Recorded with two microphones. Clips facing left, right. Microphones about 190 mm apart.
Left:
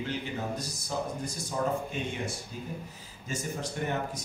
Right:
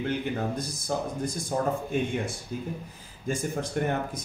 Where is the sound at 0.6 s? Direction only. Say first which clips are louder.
Right 4 dB; 55° right (ahead or behind).